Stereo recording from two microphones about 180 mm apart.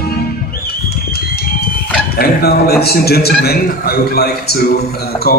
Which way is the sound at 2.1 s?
60° left (ahead or behind).